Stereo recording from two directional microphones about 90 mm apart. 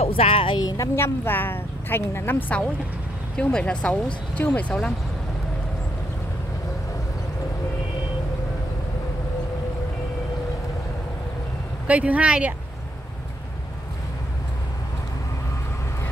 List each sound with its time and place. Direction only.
0.0 s speech: 90° left
0.6 s speech: 45° left (ahead or behind)
0.9 s a woman's voice: 25° left (ahead or behind)
11.9 s speech: 15° right (ahead or behind)